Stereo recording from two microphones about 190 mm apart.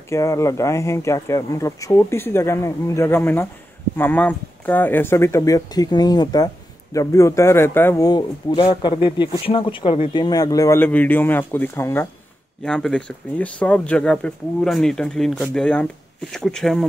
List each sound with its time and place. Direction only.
0.1 s speech: 15° left (ahead or behind)